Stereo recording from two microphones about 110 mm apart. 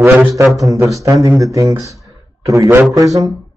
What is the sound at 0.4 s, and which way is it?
Speech, centre (ahead or behind).